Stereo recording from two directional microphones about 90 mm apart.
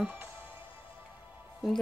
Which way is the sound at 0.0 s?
20° right (ahead or behind).